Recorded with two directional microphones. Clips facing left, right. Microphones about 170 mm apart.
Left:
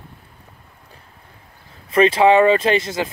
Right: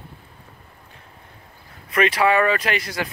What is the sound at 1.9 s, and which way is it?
Speech, 25° left (ahead or behind).